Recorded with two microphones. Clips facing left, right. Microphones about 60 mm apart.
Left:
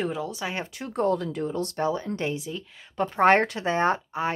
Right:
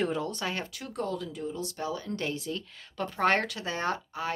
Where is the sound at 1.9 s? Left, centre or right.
Left; by 2.9 s centre.